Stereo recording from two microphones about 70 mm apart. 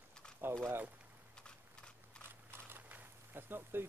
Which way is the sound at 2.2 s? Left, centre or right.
Right.